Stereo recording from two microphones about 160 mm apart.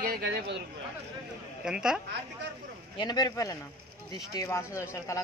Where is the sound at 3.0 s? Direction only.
25° left (ahead or behind).